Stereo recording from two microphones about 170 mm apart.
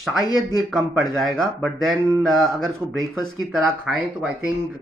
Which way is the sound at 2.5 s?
5° left (ahead or behind).